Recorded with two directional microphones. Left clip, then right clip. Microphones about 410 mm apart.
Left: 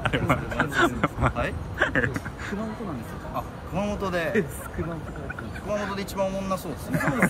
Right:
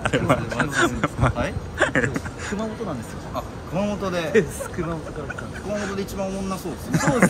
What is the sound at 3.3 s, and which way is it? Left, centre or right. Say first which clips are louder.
Speech: right 3 dB; centre.